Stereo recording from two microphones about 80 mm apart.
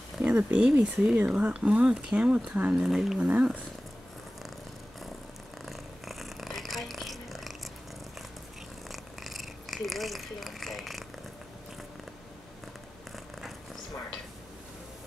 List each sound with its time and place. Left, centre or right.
0.2 s speech: centre
2.7 s speech: centre
3.2 s speech: centre
5.7 s purr: centre
8.8 s purr: centre